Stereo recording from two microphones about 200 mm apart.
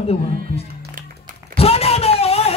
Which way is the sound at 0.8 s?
45° right (ahead or behind).